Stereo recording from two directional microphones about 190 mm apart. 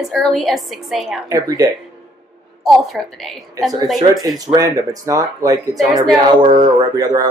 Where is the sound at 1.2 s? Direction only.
20° right (ahead or behind).